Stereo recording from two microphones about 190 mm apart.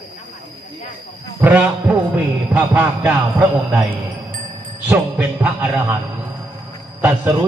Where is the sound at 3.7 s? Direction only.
20° right (ahead or behind).